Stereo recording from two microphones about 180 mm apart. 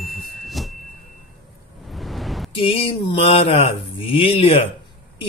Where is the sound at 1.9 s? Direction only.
Centre (ahead or behind).